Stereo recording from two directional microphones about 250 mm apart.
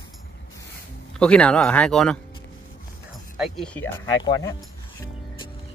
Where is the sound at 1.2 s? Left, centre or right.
Centre.